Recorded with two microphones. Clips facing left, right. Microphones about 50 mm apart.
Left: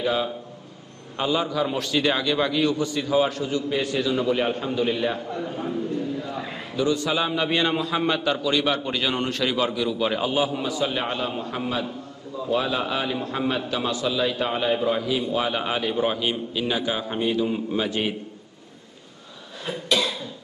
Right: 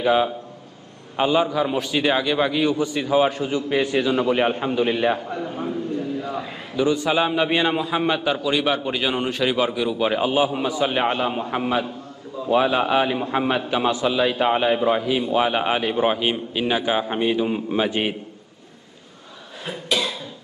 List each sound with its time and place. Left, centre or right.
0.0 s a man's voice: right
5.4 s a sound: centre
6.8 s a man's voice: right
19.6 s cough: centre